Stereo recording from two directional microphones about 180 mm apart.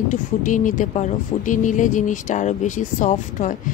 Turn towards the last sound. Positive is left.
turn(degrees=45)  # may be behind; listen again after turning